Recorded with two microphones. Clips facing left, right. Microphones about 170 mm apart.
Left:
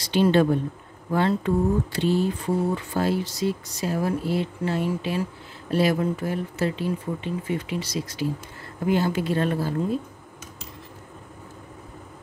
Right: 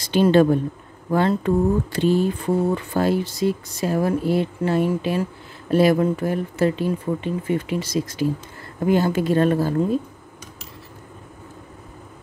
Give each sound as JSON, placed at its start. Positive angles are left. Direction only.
{"t": 0.0, "sound": "speech", "side_deg": -45}